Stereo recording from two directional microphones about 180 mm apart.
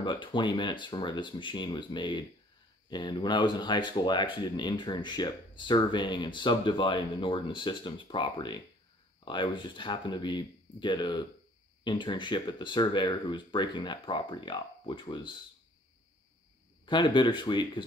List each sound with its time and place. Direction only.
0.0 s speech: 25° left (ahead or behind)
16.8 s speech: 25° left (ahead or behind)